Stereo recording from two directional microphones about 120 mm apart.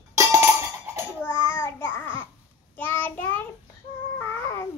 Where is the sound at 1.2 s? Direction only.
20° left (ahead or behind).